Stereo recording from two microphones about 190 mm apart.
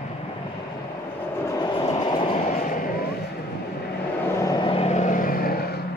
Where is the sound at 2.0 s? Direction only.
25° left (ahead or behind); by 3.1 s 50° left (ahead or behind).